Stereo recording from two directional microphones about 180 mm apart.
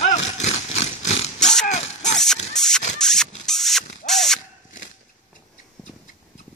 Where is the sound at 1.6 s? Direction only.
40° left (ahead or behind).